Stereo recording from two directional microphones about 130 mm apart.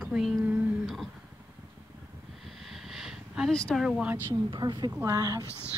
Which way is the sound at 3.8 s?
10° right (ahead or behind).